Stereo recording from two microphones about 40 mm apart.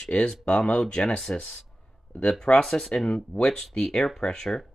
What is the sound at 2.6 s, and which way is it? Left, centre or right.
Speech, centre.